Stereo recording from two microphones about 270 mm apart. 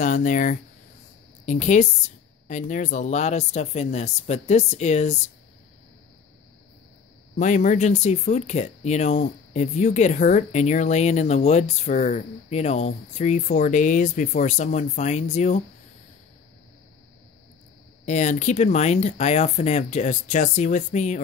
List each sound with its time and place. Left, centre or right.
0.0 s speech: left
7.3 s speech: left
18.0 s speech: left